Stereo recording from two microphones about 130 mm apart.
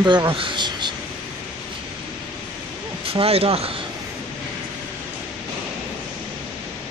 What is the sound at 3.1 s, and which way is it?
Speech, 45° right (ahead or behind).